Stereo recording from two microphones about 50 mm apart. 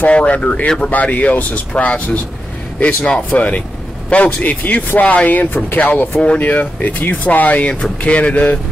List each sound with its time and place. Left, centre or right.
0.0 s speech: left